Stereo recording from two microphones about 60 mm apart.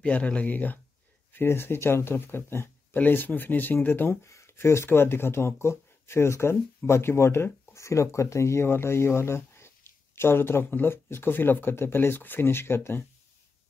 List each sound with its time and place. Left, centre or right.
0.0 s speech: centre
1.3 s speech: left
3.0 s speech: left
4.1 s speech: left